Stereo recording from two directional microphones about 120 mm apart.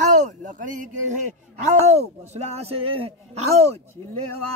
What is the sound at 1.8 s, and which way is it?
A man's voice, 65° right (ahead or behind).